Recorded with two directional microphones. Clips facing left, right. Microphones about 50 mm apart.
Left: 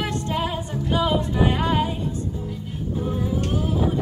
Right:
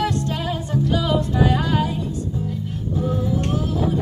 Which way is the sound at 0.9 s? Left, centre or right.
Left.